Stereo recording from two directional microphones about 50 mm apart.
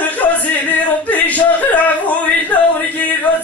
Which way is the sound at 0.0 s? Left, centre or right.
Left.